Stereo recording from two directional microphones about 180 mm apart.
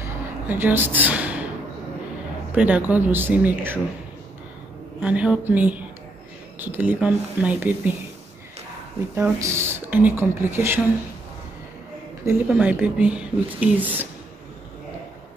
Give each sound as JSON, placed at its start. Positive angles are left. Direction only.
{"t": 0.5, "sound": "a woman's voice", "side_deg": -10}
{"t": 2.5, "sound": "speech", "side_deg": -10}
{"t": 5.0, "sound": "speech", "side_deg": -5}
{"t": 9.1, "sound": "speech", "side_deg": -15}
{"t": 12.3, "sound": "speech", "side_deg": -10}